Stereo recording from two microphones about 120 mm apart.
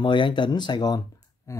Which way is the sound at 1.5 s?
25° left (ahead or behind).